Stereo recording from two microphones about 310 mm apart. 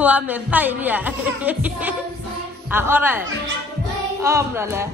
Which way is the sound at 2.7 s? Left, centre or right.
Centre.